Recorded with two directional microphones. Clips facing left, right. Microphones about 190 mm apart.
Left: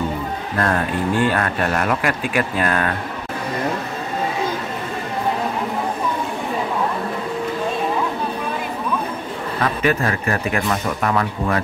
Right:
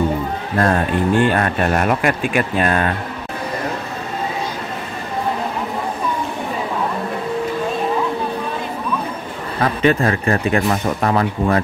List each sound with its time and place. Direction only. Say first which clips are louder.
0.6 s speech: right 4 dB; 30° right (ahead or behind)
9.6 s speech: right 4 dB; 30° right (ahead or behind)